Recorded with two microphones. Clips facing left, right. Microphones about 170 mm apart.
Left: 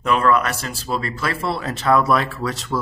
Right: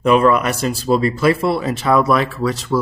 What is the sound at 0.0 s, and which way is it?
Speech, 15° right (ahead or behind).